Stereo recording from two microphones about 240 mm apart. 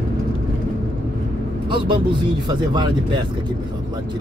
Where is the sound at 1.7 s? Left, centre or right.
Right.